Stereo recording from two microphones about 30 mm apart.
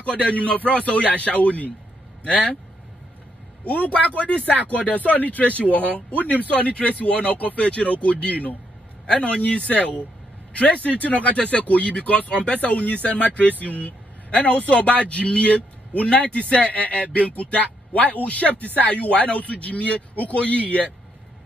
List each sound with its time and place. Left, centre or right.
0.2 s a man's voice: left
3.6 s a man's voice: left
9.4 s a man's voice: left
13.4 s a man's voice: left